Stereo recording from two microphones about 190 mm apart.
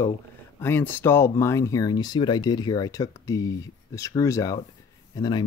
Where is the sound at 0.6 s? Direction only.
10° left (ahead or behind).